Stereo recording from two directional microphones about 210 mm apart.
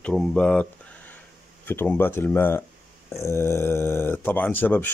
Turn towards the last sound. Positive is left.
turn(degrees=10)  # may be behind; listen again after turning